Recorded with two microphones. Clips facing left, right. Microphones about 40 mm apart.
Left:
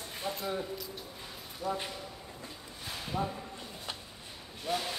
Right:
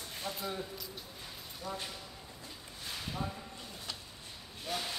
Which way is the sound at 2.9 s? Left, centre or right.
Centre.